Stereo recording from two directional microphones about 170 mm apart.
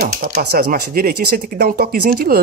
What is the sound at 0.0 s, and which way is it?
Speech, 65° right (ahead or behind).